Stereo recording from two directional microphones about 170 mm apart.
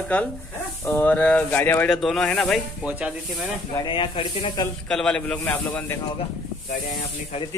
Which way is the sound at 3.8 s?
30° left (ahead or behind).